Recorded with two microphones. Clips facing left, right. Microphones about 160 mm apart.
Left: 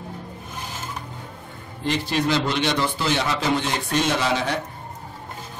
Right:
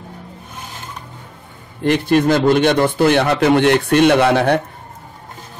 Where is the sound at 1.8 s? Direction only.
55° right (ahead or behind).